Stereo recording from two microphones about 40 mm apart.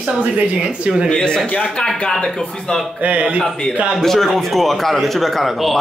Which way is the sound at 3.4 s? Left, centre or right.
Centre.